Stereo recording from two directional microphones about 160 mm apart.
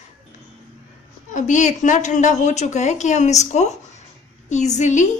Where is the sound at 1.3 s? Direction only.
50° left (ahead or behind).